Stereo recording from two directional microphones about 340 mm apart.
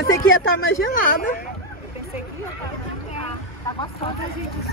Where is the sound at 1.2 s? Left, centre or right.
Left.